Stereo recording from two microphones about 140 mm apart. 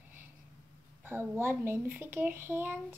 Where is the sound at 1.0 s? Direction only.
15° right (ahead or behind).